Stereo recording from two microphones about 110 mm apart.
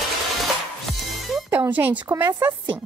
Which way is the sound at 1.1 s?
Centre (ahead or behind).